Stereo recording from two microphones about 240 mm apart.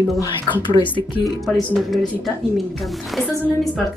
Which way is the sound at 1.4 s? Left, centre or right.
Centre.